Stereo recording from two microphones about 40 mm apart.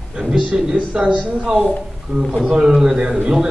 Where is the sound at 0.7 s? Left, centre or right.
Right.